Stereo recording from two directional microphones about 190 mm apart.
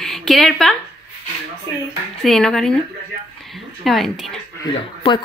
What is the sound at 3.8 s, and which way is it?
Speech, centre (ahead or behind).